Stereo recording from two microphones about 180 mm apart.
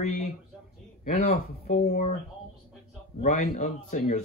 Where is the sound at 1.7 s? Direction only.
40° left (ahead or behind).